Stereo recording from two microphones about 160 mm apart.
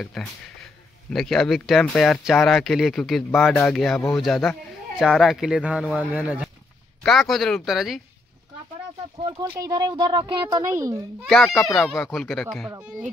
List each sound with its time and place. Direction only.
0.0 s speech: 5° left (ahead or behind)
9.5 s speech: 25° right (ahead or behind)
11.2 s speech: 5° left (ahead or behind)